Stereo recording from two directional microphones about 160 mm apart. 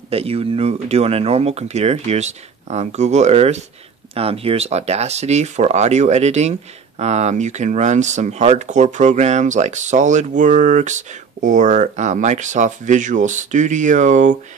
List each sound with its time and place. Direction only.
0.1 s speech: 40° right (ahead or behind)